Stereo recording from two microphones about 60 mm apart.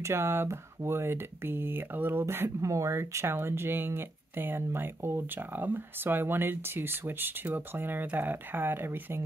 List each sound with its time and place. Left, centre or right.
0.0 s speech: right
2.6 s speech: right